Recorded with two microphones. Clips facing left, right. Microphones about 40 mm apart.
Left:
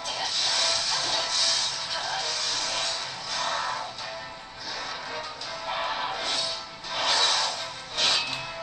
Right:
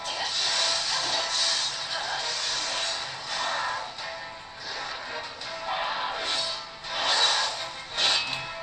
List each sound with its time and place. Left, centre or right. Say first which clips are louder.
0.0 s music: even; centre
5.7 s music: even; centre
6.9 s music: even; centre